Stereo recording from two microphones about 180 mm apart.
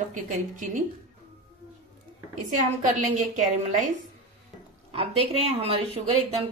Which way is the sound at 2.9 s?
45° right (ahead or behind).